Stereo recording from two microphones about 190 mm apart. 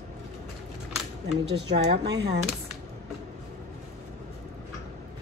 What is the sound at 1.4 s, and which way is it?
Speech, 65° right (ahead or behind).